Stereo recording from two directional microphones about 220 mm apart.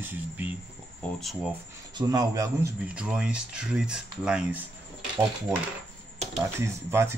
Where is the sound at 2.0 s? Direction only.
15° right (ahead or behind).